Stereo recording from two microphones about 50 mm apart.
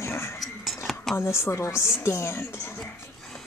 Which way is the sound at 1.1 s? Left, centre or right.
Left.